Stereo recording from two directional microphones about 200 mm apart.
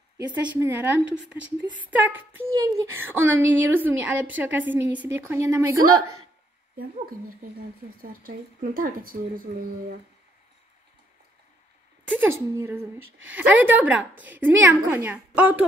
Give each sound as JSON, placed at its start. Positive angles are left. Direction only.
{"t": 0.3, "sound": "speech", "side_deg": -10}
{"t": 5.9, "sound": "a woman's voice", "side_deg": -90}
{"t": 6.8, "sound": "speech", "side_deg": -45}
{"t": 12.1, "sound": "speech", "side_deg": -10}